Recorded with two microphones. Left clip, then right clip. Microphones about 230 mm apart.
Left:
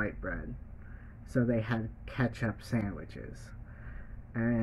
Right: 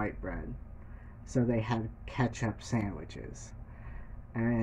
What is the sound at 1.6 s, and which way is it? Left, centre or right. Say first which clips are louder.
Speech: right 1 dB; left.